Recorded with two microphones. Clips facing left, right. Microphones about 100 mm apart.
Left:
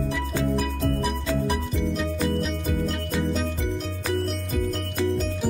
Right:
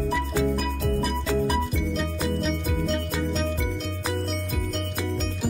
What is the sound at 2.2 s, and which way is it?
Music, centre (ahead or behind).